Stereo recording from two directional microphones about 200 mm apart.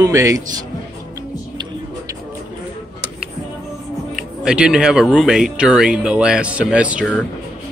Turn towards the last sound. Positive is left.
turn(degrees=-5)  # may be behind; listen again after turning